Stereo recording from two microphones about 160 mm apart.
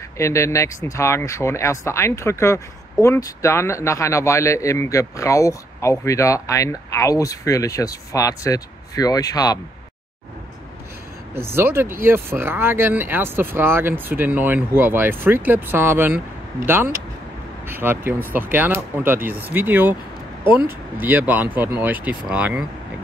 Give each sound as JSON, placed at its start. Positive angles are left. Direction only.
{"t": 0.2, "sound": "speech", "side_deg": 20}
{"t": 11.5, "sound": "speech", "side_deg": -15}